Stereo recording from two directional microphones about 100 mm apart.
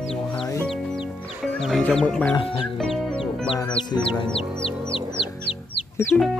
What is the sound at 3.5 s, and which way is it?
Music, 65° left (ahead or behind).